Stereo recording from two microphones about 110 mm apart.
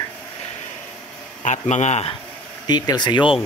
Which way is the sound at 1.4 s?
90° left.